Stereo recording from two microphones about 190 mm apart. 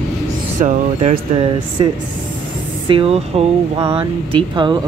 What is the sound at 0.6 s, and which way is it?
Speech, 45° right (ahead or behind).